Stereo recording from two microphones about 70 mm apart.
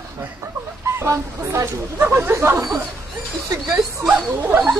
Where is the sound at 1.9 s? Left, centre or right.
Right.